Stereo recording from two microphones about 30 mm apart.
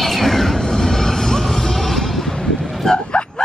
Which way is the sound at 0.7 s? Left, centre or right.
Centre.